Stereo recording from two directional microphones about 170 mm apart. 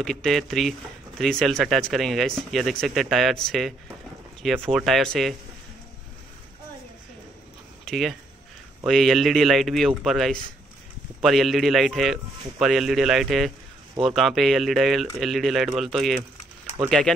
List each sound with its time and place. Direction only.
0.0 s speech: centre (ahead or behind)
7.8 s speech: centre (ahead or behind)